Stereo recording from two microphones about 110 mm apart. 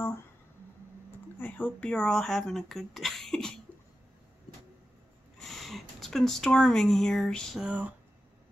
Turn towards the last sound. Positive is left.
turn(degrees=-10)  # may be behind; listen again after turning